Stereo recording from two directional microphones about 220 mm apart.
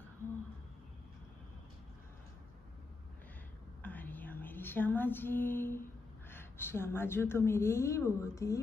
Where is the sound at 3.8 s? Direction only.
10° left (ahead or behind).